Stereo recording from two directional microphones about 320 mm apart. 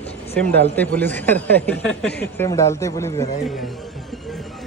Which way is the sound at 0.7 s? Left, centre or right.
Centre.